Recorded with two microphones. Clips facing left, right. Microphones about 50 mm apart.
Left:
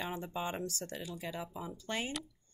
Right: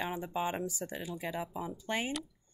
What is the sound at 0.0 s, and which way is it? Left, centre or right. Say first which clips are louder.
Speech: right 4 dB; centre.